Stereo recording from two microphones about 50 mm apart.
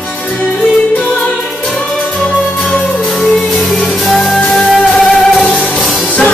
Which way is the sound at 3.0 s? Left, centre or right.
Centre.